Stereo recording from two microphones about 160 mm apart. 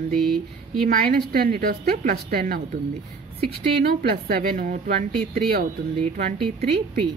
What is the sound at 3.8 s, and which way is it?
A woman's voice, 75° right (ahead or behind).